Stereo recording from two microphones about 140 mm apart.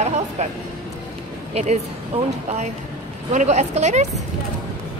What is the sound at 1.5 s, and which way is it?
Speech, 55° right (ahead or behind).